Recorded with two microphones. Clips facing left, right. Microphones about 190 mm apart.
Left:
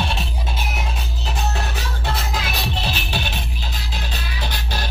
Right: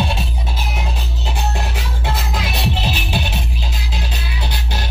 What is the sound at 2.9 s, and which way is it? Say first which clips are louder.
Music: right 4 dB; 5° right (ahead or behind).